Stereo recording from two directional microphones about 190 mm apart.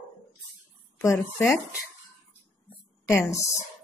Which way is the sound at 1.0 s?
15° left (ahead or behind).